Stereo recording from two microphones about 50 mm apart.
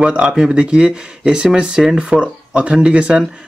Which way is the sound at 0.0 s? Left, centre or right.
Right.